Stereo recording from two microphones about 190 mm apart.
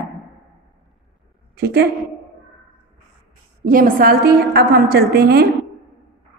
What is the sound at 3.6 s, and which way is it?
A woman's voice, 45° right (ahead or behind).